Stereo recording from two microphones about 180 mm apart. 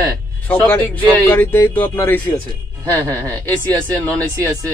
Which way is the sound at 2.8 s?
20° right (ahead or behind).